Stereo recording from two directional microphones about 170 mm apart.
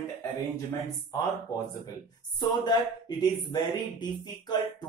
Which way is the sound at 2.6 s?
25° left (ahead or behind).